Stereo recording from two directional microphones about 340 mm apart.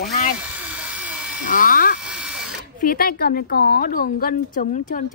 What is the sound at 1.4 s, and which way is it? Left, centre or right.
Speech, left.